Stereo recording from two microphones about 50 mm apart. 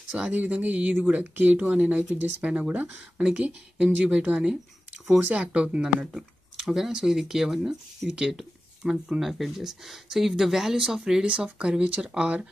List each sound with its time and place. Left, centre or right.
0.3 s speech: right; by 5.4 s centre
5.4 s speech: right
6.1 s a sound: centre
6.9 s speech: centre
11.2 s speech: right